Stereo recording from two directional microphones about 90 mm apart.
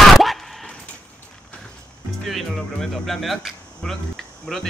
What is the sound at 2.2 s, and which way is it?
Speech, 5° left (ahead or behind).